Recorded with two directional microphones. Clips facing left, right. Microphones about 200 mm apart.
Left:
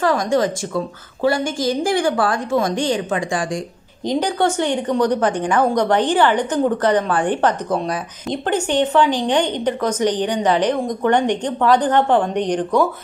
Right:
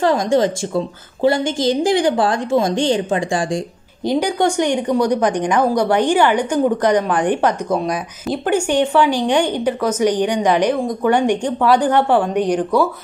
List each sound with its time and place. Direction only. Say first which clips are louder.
0.0 s a woman's voice: right 2 dB; 25° right (ahead or behind)
4.0 s a woman's voice: right 2 dB; 10° right (ahead or behind)